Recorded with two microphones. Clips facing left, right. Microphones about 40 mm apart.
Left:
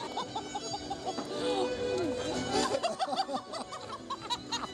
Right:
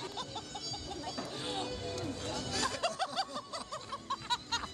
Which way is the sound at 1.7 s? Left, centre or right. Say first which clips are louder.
Left 7 dB; left.